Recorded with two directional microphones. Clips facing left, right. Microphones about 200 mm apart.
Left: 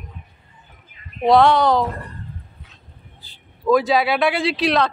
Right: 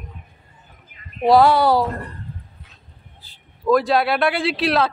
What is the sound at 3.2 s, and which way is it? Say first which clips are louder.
Speech: even; centre (ahead or behind).